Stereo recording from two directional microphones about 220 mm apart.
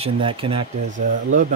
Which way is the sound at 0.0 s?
25° right (ahead or behind).